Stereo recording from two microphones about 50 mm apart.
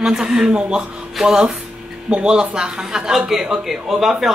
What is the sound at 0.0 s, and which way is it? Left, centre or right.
Speech, centre.